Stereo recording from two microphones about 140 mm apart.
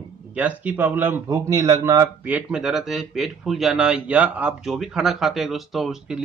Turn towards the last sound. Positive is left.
turn(degrees=0)  # may be behind; listen again after turning